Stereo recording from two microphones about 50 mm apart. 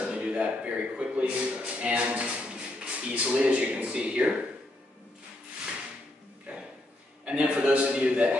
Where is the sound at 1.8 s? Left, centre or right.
Right.